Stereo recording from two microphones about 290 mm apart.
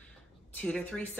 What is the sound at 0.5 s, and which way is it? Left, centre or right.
Speech, centre.